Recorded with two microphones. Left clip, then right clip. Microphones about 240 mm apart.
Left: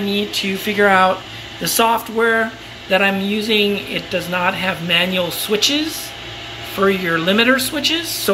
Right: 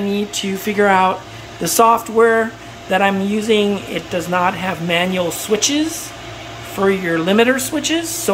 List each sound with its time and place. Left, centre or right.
0.1 s speech: centre